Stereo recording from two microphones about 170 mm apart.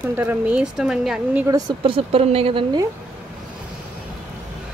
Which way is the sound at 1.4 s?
25° right (ahead or behind).